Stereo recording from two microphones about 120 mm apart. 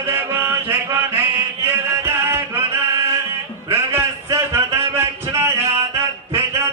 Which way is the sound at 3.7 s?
20° right (ahead or behind).